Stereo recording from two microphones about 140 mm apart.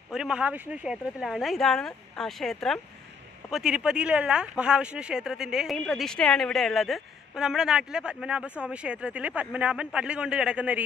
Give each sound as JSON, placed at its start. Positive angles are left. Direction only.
{"t": 0.1, "sound": "speech", "side_deg": -5}